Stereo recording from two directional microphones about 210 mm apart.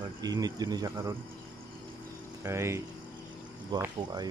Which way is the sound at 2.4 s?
15° right (ahead or behind).